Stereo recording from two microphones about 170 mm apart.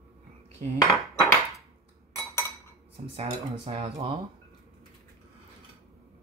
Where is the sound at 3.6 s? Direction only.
35° right (ahead or behind).